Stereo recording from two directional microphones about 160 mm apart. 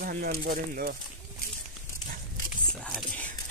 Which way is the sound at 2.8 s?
5° left (ahead or behind).